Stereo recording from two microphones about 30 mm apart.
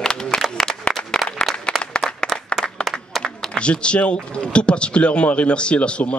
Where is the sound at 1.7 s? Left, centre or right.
Left.